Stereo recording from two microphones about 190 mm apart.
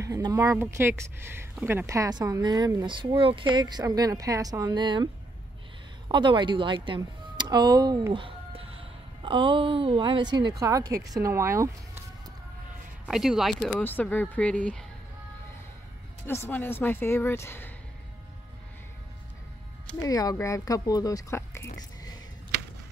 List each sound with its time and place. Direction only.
0.0 s speech: 20° right (ahead or behind)
13.0 s speech: 5° right (ahead or behind)
16.3 s speech: 10° left (ahead or behind)
20.0 s speech: 20° left (ahead or behind)
21.7 s a sound: 20° left (ahead or behind)